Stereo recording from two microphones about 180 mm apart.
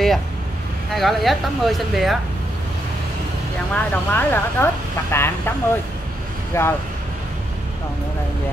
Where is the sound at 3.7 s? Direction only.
10° left (ahead or behind).